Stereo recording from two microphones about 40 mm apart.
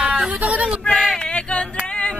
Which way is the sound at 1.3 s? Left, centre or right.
Left.